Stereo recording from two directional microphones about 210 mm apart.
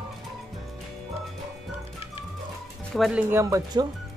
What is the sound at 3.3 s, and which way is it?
Speech, 15° right (ahead or behind).